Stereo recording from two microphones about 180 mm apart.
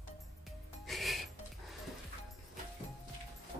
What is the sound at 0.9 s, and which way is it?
Music, centre (ahead or behind).